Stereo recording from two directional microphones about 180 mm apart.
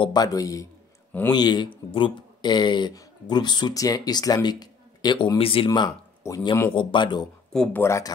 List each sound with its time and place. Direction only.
0.0 s a man's voice: 20° left (ahead or behind)
5.7 s speech: 20° left (ahead or behind)
6.7 s a man's voice: 30° left (ahead or behind)
7.5 s speech: centre (ahead or behind)
7.8 s speech: 15° left (ahead or behind)